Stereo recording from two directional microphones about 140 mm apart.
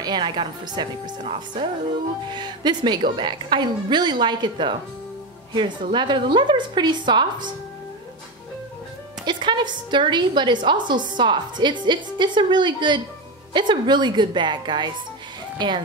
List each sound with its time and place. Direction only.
0.0 s a woman's voice: 35° right (ahead or behind)
9.2 s a woman's voice: 35° right (ahead or behind)